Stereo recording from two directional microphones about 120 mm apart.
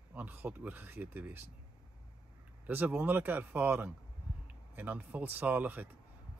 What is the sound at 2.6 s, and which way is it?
Speech, 15° right (ahead or behind).